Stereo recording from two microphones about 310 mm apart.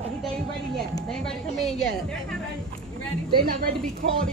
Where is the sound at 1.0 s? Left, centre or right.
Centre.